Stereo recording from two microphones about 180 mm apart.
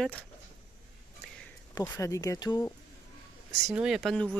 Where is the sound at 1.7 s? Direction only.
15° left (ahead or behind).